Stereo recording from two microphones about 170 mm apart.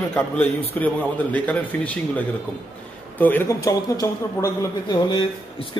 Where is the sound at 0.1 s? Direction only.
10° left (ahead or behind).